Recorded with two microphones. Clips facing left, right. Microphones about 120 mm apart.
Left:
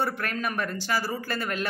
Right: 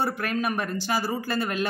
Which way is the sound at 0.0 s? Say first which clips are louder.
Right 2 dB; 15° right (ahead or behind).